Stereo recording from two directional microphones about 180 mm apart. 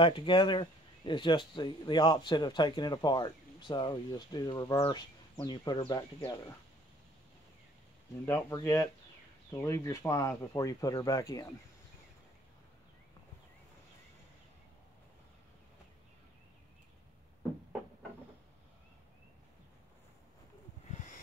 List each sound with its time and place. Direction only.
0.0 s a man's voice: 25° left (ahead or behind)
8.3 s a man's voice: 15° left (ahead or behind)